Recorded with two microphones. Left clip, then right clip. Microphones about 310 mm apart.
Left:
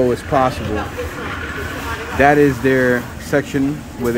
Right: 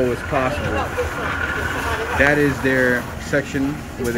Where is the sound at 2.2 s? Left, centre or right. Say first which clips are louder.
Left 5 dB; centre.